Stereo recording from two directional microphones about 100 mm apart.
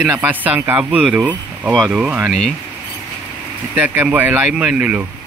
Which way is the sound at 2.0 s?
15° right (ahead or behind).